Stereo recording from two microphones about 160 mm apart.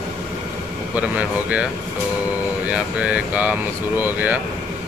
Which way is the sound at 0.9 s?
10° right (ahead or behind).